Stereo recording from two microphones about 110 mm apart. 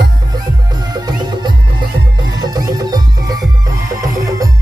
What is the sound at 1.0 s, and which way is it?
Music, 40° right (ahead or behind).